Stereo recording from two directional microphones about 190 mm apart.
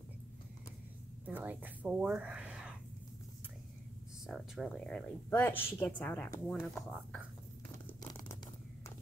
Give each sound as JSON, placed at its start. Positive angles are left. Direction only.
{"t": 1.2, "sound": "speech", "side_deg": -10}
{"t": 4.3, "sound": "a woman's voice", "side_deg": 0}
{"t": 6.5, "sound": "speech", "side_deg": 0}
{"t": 7.8, "sound": "a sound", "side_deg": 15}